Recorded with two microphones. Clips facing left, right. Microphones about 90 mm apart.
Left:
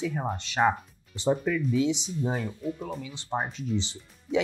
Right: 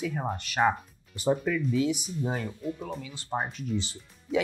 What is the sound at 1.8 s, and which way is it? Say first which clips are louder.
Speech: left 1 dB; 20° left (ahead or behind).